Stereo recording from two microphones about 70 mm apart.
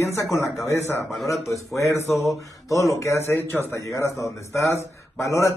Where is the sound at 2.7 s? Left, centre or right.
Left.